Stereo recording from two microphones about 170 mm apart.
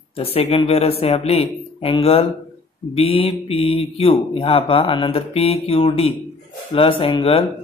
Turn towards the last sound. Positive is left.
turn(degrees=30)  # may be behind; listen again after turning